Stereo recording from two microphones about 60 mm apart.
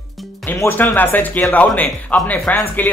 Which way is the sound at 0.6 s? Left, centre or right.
Left.